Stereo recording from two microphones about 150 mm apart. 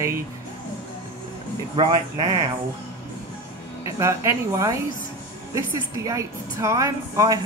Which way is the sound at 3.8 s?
20° right (ahead or behind).